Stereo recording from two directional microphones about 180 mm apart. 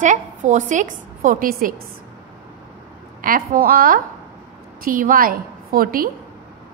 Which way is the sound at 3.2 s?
50° right (ahead or behind).